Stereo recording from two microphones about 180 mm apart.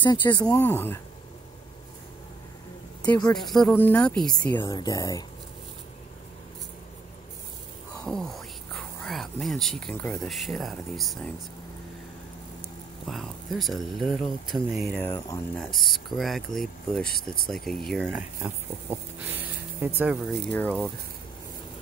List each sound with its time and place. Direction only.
0.0 s speech: 25° left (ahead or behind)
0.5 s speech: 10° left (ahead or behind)
3.1 s speech: 5° left (ahead or behind)
8.0 s speech: centre (ahead or behind)
13.0 s speech: centre (ahead or behind)
18.0 s speech: 10° right (ahead or behind)
20.5 s speech: 5° left (ahead or behind)